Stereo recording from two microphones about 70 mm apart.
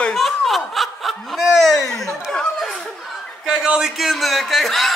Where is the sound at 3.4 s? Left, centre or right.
Centre.